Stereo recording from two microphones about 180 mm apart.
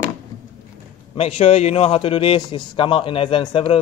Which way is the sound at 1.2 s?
35° left (ahead or behind).